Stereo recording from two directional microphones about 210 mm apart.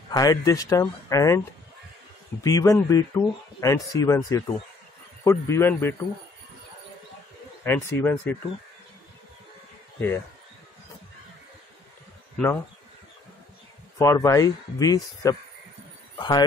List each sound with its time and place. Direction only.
0.1 s speech: 15° left (ahead or behind)
2.4 s speech: 15° left (ahead or behind)
7.6 s speech: 10° left (ahead or behind)
9.9 s speech: 10° left (ahead or behind)
13.9 s speech: 15° left (ahead or behind)